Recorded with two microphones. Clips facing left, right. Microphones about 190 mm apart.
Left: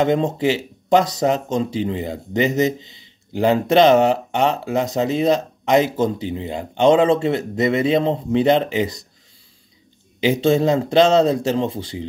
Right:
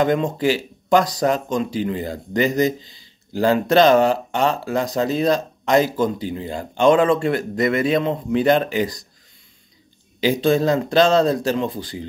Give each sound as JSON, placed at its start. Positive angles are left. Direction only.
{"t": 0.0, "sound": "speech", "side_deg": 25}
{"t": 10.2, "sound": "speech", "side_deg": 25}